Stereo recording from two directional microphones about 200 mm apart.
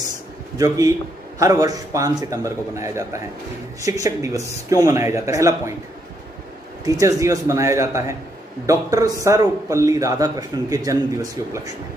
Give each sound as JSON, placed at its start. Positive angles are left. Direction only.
{"t": 0.6, "sound": "a man's voice", "side_deg": -15}
{"t": 6.8, "sound": "a man's voice", "side_deg": -15}